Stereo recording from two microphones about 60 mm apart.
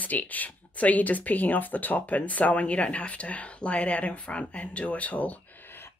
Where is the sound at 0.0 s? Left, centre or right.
Left.